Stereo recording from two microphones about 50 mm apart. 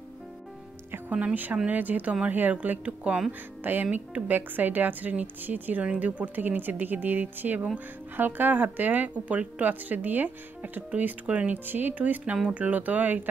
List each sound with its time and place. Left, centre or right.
1.1 s a woman's voice: right
3.3 s a woman's voice: right